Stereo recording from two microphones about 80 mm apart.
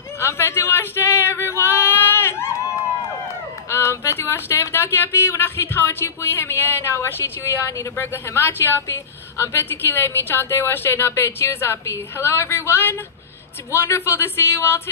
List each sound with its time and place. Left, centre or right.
0.2 s male singing: left
3.7 s speech: left